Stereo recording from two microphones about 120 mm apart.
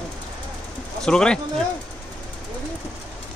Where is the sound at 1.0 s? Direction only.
5° left (ahead or behind).